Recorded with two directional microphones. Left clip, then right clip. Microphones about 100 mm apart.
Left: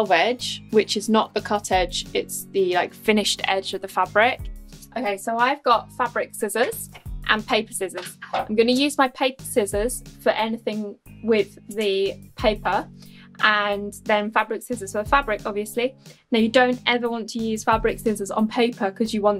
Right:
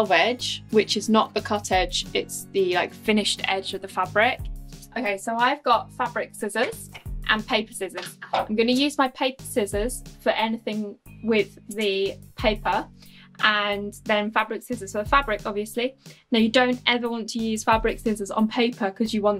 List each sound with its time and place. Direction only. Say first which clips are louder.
0.0 s speech: left 1 dB; 25° left (ahead or behind)
5.5 s speech: left 2 dB; 25° left (ahead or behind)